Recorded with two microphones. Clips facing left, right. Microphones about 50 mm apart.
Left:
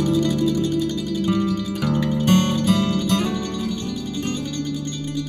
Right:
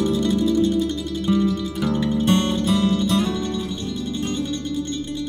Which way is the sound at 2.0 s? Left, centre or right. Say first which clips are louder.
Left 1 dB; left.